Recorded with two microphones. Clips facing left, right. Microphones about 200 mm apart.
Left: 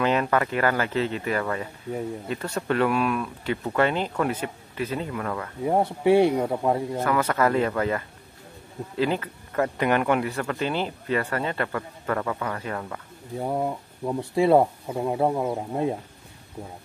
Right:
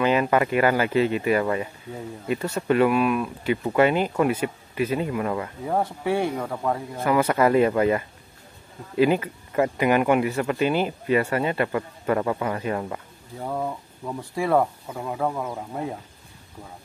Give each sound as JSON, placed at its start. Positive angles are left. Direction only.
{"t": 0.0, "sound": "speech", "side_deg": -5}
{"t": 6.0, "sound": "speech", "side_deg": 20}
{"t": 7.0, "sound": "speech", "side_deg": -10}
{"t": 13.4, "sound": "speech", "side_deg": 20}